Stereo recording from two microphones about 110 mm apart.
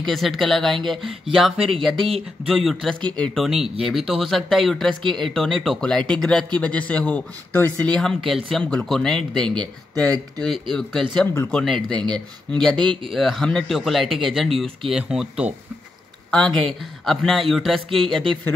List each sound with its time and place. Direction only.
0.0 s speech: centre (ahead or behind)
2.0 s speech: 55° right (ahead or behind)
2.4 s speech: centre (ahead or behind)
12.7 s speech: 45° right (ahead or behind)
13.1 s speech: centre (ahead or behind)
16.3 s speech: 5° left (ahead or behind)